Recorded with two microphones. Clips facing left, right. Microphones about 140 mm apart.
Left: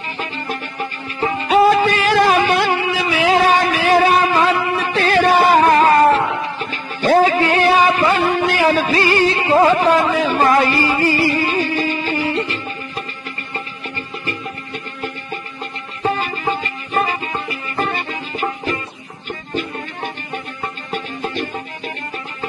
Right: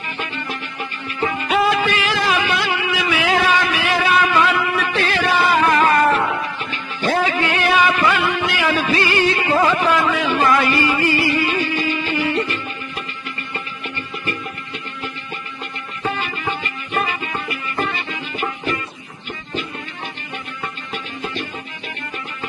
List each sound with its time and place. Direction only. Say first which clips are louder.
0.2 s music: left 3 dB; 40° left (ahead or behind)
16.0 s music: left 4 dB; 40° left (ahead or behind)
20.9 s music: left 5 dB; 45° left (ahead or behind)